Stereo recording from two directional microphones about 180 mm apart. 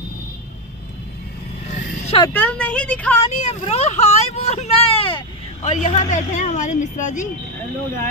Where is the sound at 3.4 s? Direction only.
35° left (ahead or behind).